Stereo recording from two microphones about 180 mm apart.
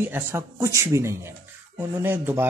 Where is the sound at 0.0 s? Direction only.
10° right (ahead or behind).